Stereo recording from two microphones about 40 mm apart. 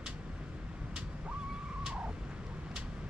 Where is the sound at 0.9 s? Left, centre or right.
Right.